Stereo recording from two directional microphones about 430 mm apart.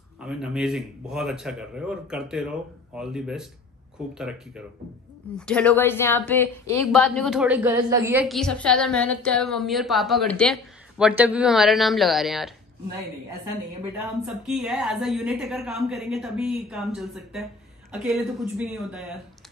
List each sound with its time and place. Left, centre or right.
0.2 s a woman's voice: centre
14.2 s a woman's voice: centre